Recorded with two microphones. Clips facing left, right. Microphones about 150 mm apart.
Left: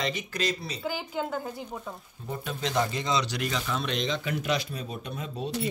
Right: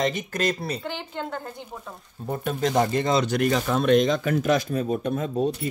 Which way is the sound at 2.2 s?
50° right (ahead or behind).